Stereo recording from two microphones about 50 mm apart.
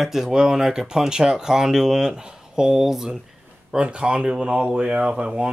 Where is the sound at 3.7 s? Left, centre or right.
Centre.